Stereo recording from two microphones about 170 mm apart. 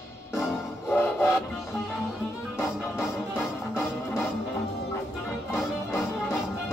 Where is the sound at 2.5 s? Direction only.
15° left (ahead or behind).